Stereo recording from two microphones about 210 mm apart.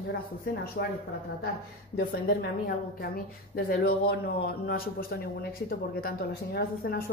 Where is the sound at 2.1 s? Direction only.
45° left (ahead or behind).